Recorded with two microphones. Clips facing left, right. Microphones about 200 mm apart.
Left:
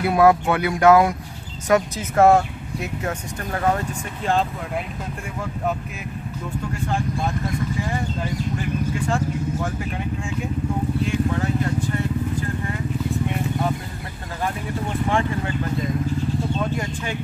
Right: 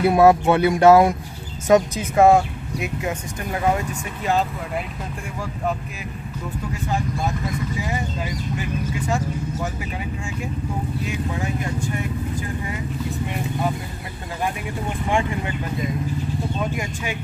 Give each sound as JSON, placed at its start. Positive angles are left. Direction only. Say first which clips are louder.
{"t": 0.1, "sound": "speech", "louder": "even", "side_deg": -25}
{"t": 1.7, "sound": "speech", "louder": "right 3 dB", "side_deg": -15}
{"t": 6.7, "sound": "speech", "louder": "even", "side_deg": -5}
{"t": 15.0, "sound": "speech", "louder": "right 1 dB", "side_deg": -15}